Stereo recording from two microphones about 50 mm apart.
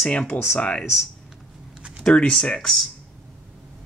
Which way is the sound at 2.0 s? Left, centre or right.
Left.